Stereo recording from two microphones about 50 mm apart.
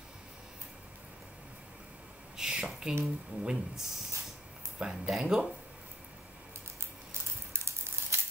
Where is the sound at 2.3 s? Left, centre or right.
Centre.